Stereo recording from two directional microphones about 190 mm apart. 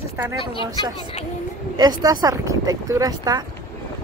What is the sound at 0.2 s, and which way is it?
Speech, 15° right (ahead or behind).